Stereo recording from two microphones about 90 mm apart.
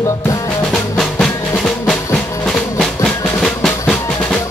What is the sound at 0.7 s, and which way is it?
Music, 5° left (ahead or behind).